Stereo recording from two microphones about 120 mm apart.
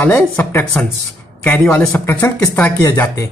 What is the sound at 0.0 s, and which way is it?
Speech, 15° left (ahead or behind).